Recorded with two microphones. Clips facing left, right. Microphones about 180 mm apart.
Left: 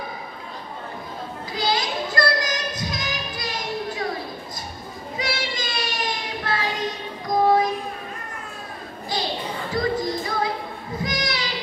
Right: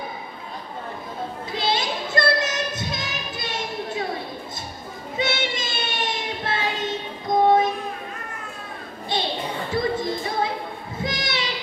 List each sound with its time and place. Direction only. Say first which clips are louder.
1.5 s child singing: left 1 dB; 25° right (ahead or behind)
5.1 s child singing: right 3 dB; 25° right (ahead or behind)
9.8 s music: left 1 dB; 25° right (ahead or behind)